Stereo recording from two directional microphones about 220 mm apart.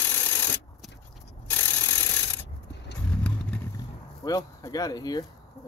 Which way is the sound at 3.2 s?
5° left (ahead or behind).